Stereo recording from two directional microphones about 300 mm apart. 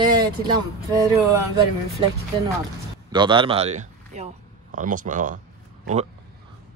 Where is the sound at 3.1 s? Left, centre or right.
Centre.